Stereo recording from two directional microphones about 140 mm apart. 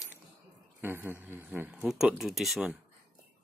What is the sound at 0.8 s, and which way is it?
A man's voice, 15° right (ahead or behind).